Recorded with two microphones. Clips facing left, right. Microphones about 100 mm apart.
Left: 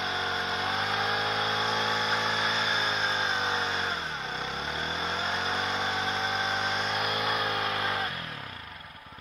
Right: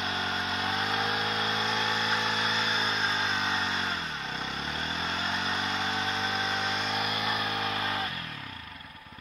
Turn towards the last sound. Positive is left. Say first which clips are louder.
# left 1 dB
turn(degrees=20)  # may be behind; listen again after turning